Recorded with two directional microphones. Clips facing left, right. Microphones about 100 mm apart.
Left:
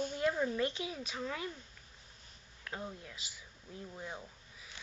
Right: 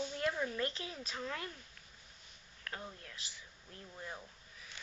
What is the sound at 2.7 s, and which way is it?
Speech, 10° left (ahead or behind).